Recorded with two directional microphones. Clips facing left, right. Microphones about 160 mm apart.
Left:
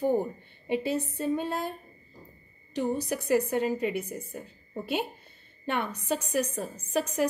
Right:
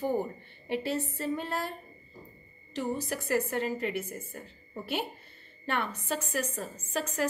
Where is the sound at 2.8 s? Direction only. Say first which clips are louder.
Left 4 dB; 15° left (ahead or behind).